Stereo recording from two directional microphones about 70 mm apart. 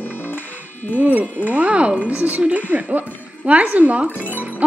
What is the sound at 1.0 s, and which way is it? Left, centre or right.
A woman's voice, right.